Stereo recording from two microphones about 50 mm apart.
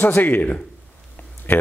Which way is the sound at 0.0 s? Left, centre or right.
Left.